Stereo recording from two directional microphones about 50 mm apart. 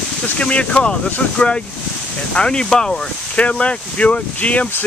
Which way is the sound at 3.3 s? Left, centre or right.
Left.